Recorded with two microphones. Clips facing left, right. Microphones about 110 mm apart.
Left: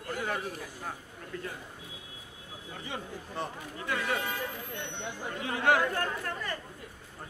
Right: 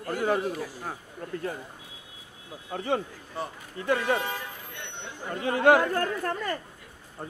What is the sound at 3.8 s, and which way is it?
Speech, 35° right (ahead or behind).